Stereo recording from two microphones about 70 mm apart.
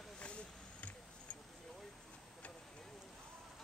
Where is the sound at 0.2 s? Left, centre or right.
Centre.